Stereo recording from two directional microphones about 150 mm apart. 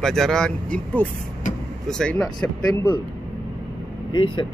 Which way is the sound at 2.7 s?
25° left (ahead or behind).